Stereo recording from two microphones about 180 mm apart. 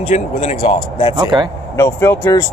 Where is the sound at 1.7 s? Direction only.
15° left (ahead or behind).